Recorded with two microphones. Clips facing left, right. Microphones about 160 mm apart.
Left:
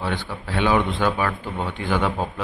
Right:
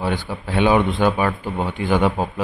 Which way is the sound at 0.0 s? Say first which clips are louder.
Right 4 dB; 20° right (ahead or behind).